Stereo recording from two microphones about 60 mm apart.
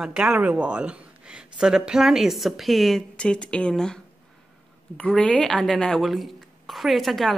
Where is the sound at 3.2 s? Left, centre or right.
Centre.